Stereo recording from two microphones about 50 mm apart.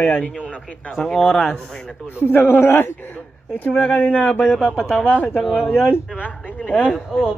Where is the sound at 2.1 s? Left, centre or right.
Left.